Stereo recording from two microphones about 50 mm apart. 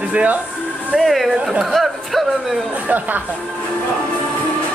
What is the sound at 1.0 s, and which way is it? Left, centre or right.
Speech, centre.